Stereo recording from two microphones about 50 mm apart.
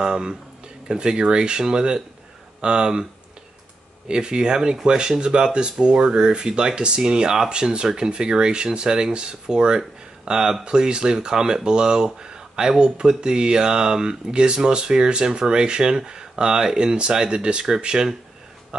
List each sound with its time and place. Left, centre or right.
0.0 s speech: centre
4.1 s speech: centre